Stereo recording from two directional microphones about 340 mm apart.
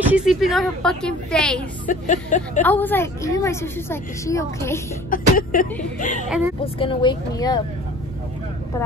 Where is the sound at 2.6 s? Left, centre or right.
Centre.